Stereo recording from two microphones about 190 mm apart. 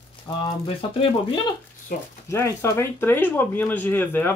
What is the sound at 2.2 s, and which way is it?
Speech, 15° left (ahead or behind).